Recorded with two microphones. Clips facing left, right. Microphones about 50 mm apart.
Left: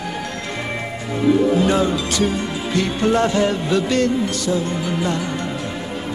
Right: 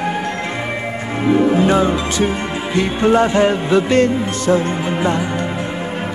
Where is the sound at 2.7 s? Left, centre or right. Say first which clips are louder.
Right 4 dB; right.